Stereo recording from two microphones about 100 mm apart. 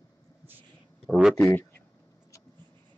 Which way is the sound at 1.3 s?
20° left (ahead or behind).